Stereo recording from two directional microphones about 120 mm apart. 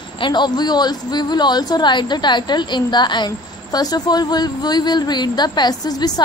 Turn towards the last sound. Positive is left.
turn(degrees=35)  # may be behind; listen again after turning